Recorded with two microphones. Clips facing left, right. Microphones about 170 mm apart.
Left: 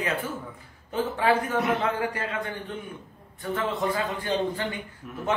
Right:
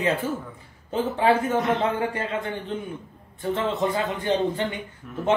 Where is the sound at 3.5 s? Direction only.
25° right (ahead or behind).